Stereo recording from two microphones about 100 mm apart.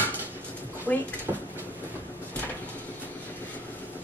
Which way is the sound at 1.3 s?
30° right (ahead or behind).